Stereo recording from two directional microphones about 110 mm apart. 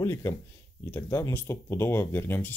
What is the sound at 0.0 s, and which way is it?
Speech, 25° left (ahead or behind).